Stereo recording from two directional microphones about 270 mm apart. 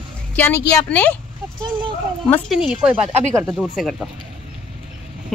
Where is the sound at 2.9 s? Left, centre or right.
Right.